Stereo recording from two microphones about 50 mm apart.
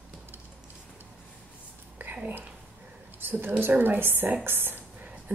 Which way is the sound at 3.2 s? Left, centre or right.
Right.